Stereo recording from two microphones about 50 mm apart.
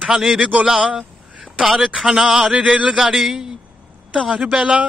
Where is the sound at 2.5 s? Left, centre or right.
Right.